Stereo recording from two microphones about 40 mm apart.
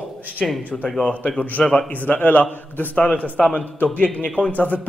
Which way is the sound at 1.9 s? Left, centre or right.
Left.